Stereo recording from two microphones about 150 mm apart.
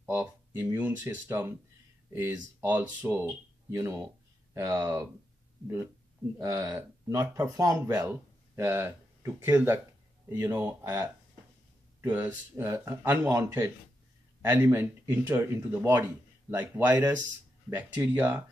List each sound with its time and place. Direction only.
0.0 s speech: 15° right (ahead or behind)
6.3 s speech: 20° right (ahead or behind)